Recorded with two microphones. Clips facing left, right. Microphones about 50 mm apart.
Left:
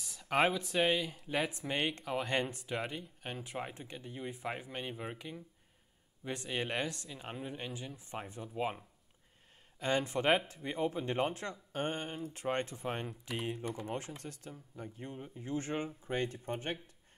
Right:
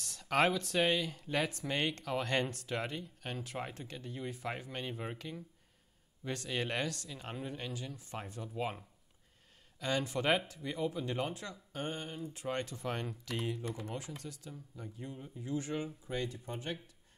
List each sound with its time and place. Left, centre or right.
0.0 s speech: centre
6.2 s speech: centre
9.8 s speech: left
13.8 s speech: left